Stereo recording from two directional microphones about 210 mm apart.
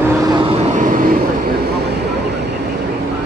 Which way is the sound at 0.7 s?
40° right (ahead or behind).